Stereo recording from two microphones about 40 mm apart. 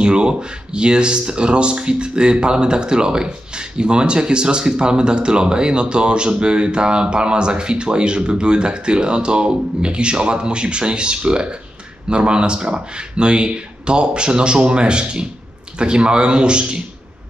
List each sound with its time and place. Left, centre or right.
0.0 s speech: right